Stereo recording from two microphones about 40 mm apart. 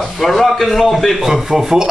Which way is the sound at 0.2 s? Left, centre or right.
Centre.